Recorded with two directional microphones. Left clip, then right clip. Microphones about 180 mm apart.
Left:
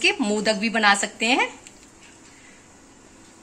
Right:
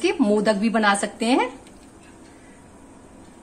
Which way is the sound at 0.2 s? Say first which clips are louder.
Right 3 dB; 10° right (ahead or behind).